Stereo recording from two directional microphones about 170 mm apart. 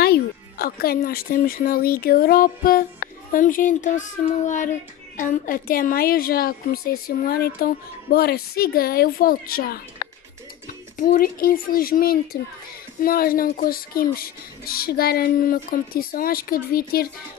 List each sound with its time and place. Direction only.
0.0 s a woman's voice: 65° left (ahead or behind)
11.0 s a woman's voice: 55° left (ahead or behind)